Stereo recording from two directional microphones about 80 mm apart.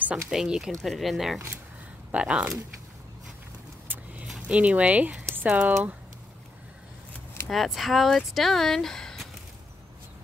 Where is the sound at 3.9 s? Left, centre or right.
Right.